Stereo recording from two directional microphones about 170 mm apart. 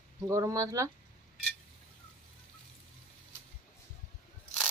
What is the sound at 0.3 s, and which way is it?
Speech, 20° right (ahead or behind).